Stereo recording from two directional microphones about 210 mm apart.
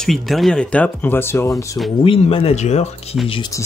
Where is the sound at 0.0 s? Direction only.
Centre (ahead or behind).